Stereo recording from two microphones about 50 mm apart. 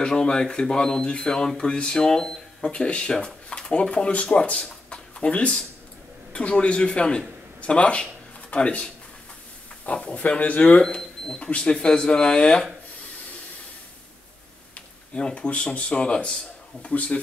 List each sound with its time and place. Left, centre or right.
0.0 s a man's voice: centre
10.8 s speech: centre
15.1 s speech: left